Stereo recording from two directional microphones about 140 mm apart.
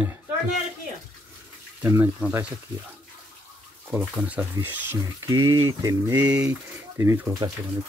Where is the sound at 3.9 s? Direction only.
10° right (ahead or behind).